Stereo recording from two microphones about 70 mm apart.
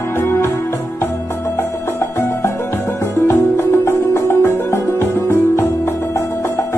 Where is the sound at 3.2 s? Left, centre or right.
Left.